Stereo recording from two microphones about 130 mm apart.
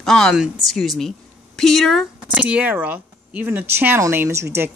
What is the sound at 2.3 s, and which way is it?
A woman's voice, 10° right (ahead or behind).